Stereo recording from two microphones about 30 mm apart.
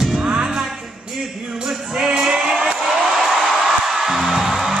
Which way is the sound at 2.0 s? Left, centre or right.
Centre.